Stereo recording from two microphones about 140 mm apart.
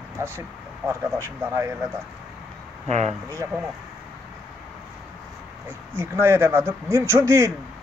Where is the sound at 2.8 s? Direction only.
50° right (ahead or behind).